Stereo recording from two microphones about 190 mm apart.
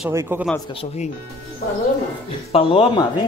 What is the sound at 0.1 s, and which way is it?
Speech, 15° right (ahead or behind).